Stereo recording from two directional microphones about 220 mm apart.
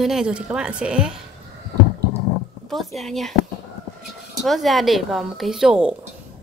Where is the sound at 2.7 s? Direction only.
Centre (ahead or behind).